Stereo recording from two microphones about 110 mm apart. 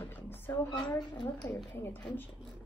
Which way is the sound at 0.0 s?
20° left (ahead or behind).